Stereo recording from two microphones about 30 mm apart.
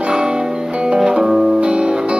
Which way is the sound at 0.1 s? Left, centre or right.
Right.